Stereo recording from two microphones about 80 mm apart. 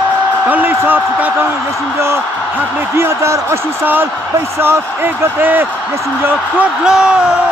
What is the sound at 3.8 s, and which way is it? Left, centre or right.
Speech, right.